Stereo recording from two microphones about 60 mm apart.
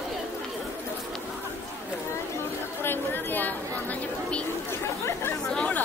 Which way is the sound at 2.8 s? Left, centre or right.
Left.